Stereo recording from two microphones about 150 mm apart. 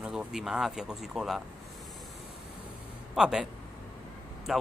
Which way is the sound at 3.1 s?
5° right (ahead or behind).